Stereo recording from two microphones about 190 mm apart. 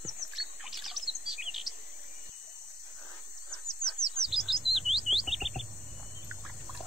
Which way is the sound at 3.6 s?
20° left (ahead or behind).